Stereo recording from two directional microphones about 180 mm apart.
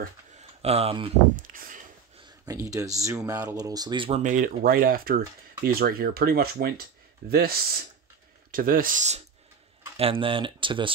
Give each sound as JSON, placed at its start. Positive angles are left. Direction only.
{"t": 0.4, "sound": "speech", "side_deg": -35}
{"t": 1.3, "sound": "speech", "side_deg": -50}
{"t": 2.4, "sound": "speech", "side_deg": -20}
{"t": 4.2, "sound": "speech", "side_deg": -45}
{"t": 9.9, "sound": "speech", "side_deg": -30}